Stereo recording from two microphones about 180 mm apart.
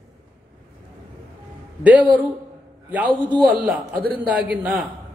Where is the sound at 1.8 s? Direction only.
10° right (ahead or behind).